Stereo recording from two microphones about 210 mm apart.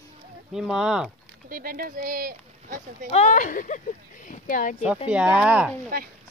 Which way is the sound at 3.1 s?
35° left (ahead or behind).